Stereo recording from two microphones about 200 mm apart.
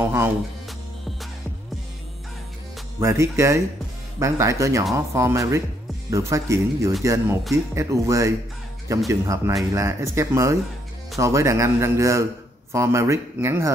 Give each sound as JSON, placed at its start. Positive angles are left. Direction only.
{"t": 0.0, "sound": "music", "side_deg": -10}
{"t": 3.0, "sound": "a man's voice", "side_deg": -15}